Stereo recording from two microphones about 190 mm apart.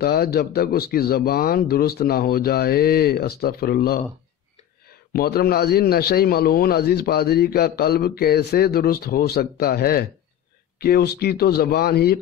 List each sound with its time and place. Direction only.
0.0 s speech: 55° left (ahead or behind)
5.1 s a man's voice: 55° left (ahead or behind)